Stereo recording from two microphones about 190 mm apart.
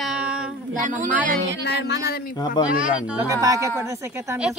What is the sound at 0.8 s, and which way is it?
Speech, 40° right (ahead or behind).